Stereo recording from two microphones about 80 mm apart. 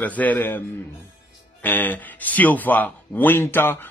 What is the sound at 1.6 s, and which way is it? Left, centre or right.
Speech, left.